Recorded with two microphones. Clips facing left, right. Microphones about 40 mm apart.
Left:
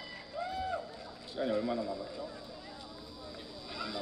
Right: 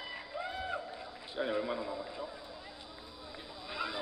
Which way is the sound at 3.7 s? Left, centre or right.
Right.